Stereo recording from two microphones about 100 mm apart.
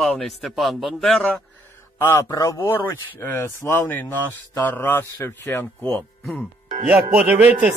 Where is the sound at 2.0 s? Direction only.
25° left (ahead or behind).